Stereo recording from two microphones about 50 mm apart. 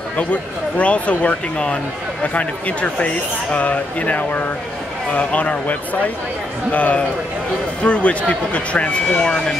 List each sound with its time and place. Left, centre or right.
0.2 s speech: left